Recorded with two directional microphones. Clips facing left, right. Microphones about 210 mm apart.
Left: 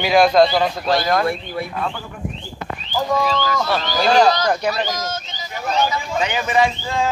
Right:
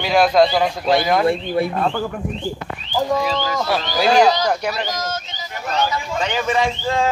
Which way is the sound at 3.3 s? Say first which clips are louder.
Left 1 dB; 20° right (ahead or behind).